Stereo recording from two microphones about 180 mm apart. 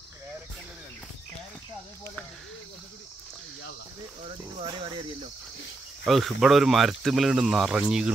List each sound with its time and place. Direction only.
4.6 s speech: 25° right (ahead or behind)
6.0 s speech: centre (ahead or behind)